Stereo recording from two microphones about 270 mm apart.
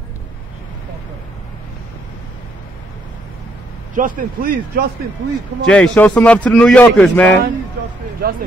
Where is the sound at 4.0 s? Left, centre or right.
Right.